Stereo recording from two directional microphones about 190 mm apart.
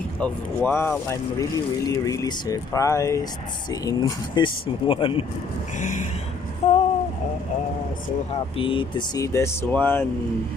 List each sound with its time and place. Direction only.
0.2 s speech: 10° left (ahead or behind); by 5.2 s 25° left (ahead or behind)
5.8 s vehicle: 40° left (ahead or behind)
6.6 s a sound: 35° left (ahead or behind)
8.5 s speech: 25° left (ahead or behind); by 10.0 s 10° left (ahead or behind)